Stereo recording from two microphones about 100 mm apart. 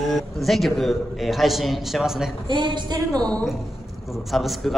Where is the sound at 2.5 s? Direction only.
50° right (ahead or behind).